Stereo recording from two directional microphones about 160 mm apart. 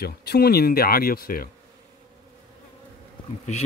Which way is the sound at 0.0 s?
85° left.